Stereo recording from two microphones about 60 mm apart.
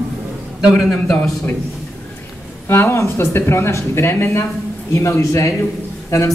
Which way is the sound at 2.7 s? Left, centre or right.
Left.